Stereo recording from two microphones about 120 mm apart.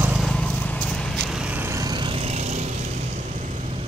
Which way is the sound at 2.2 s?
65° right (ahead or behind).